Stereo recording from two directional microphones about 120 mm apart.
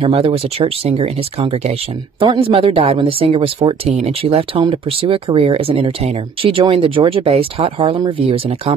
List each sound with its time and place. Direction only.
0.0 s speech: 50° right (ahead or behind)